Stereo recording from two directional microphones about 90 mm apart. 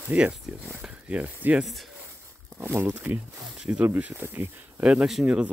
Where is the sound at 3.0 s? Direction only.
10° right (ahead or behind).